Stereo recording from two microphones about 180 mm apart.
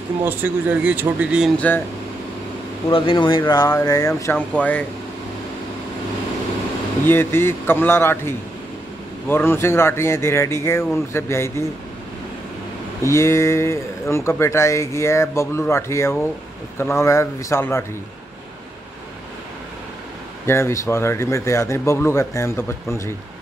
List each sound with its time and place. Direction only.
0.2 s speech: 10° right (ahead or behind)
2.9 s speech: 25° left (ahead or behind); by 4.8 s 10° left (ahead or behind)
7.1 s speech: 15° left (ahead or behind)
13.0 s speech: 15° left (ahead or behind)
20.4 s speech: 15° left (ahead or behind)